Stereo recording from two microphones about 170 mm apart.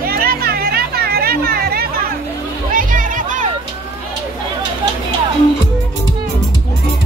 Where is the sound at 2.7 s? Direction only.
55° right (ahead or behind).